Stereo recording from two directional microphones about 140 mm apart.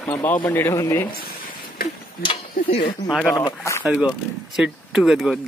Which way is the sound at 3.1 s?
5° left (ahead or behind).